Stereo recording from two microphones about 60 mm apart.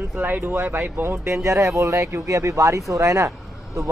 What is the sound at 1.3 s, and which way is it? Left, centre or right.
Speech, right.